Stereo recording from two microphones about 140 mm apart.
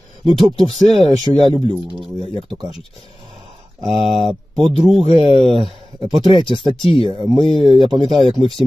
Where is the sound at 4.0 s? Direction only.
40° right (ahead or behind).